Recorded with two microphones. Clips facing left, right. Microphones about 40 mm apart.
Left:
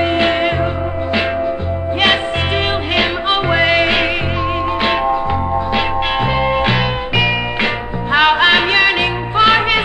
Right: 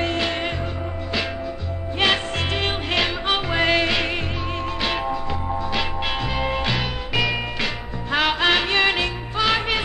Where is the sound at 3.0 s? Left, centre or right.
Left.